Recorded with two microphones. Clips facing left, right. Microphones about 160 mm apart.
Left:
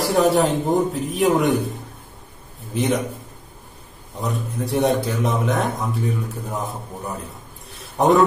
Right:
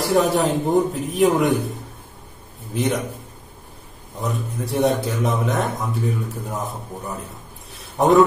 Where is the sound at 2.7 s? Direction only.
Centre (ahead or behind).